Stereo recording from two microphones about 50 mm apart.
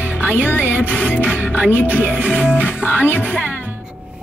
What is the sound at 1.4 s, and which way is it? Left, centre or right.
Music, right.